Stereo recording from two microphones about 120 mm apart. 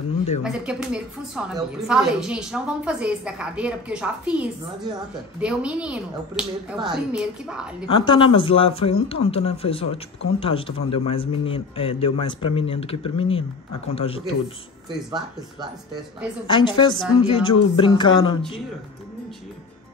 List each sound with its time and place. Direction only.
0.4 s a woman's voice: 5° right (ahead or behind)
7.9 s a man's voice: 40° left (ahead or behind)
16.4 s speech: 40° left (ahead or behind)